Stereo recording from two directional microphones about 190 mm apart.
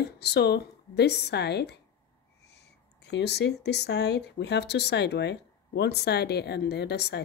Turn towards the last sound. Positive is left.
turn(degrees=60)  # may be behind; listen again after turning